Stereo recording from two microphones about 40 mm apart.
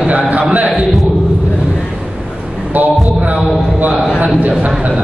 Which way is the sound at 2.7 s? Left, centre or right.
Right.